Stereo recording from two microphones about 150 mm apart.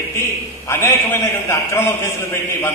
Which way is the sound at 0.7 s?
20° left (ahead or behind).